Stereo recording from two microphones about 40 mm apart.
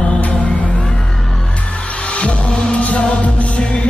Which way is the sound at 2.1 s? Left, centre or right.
Left.